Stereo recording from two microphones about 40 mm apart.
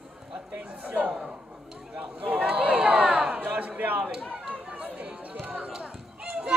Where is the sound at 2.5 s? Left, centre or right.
Right.